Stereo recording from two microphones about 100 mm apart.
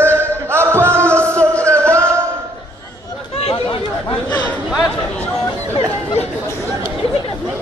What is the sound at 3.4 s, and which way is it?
Chatter, 90° left.